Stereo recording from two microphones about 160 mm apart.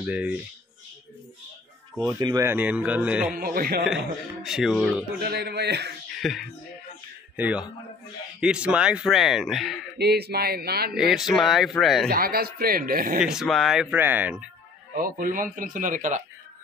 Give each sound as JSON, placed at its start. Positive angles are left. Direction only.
{"t": 0.0, "sound": "speech", "side_deg": -10}
{"t": 2.0, "sound": "speech", "side_deg": -20}
{"t": 3.3, "sound": "speech", "side_deg": -65}
{"t": 3.8, "sound": "speech", "side_deg": -5}
{"t": 5.2, "sound": "a man's voice", "side_deg": -90}
{"t": 6.1, "sound": "speech", "side_deg": 0}
{"t": 7.3, "sound": "speech", "side_deg": -10}
{"t": 9.9, "sound": "speech", "side_deg": -85}
{"t": 11.0, "sound": "speech", "side_deg": -5}
{"t": 12.1, "sound": "a man's voice", "side_deg": -70}
{"t": 13.2, "sound": "speech", "side_deg": -5}
{"t": 15.0, "sound": "speech", "side_deg": -60}